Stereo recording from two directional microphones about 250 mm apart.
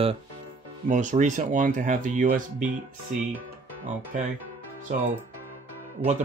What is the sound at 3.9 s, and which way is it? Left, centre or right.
Speech, right.